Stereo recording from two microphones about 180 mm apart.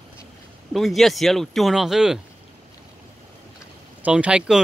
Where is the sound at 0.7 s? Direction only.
Centre (ahead or behind).